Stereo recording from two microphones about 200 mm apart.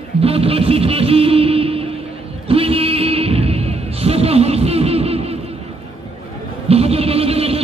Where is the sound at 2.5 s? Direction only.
30° right (ahead or behind).